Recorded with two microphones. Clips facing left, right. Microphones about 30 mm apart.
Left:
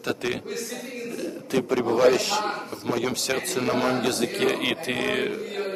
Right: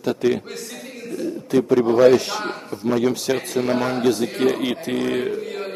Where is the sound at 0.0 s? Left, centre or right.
Left.